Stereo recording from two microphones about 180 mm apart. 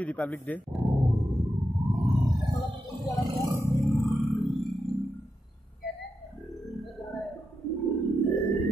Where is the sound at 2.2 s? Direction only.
25° right (ahead or behind).